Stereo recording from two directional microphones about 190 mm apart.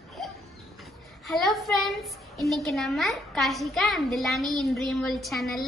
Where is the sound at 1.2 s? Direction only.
Centre (ahead or behind).